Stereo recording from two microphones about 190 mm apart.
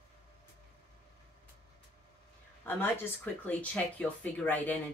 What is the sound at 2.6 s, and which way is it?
Speech, 10° left (ahead or behind).